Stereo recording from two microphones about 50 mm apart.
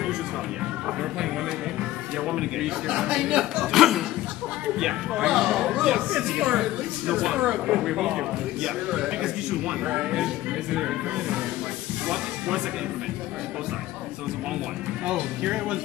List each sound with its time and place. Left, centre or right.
1.8 s speech: centre
15.0 s speech: centre